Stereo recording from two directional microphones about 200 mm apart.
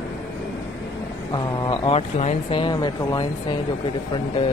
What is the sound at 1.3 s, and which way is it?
Speech, 20° left (ahead or behind).